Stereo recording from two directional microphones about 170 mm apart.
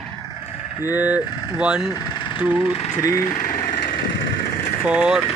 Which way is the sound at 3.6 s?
50° left (ahead or behind).